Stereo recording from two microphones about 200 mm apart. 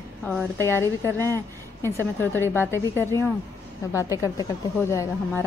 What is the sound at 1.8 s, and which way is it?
A woman's voice, 10° left (ahead or behind).